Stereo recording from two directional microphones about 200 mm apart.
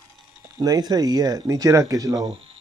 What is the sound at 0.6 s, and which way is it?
Speech, 20° right (ahead or behind).